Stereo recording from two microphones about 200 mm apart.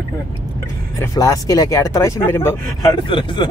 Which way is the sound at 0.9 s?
15° left (ahead or behind).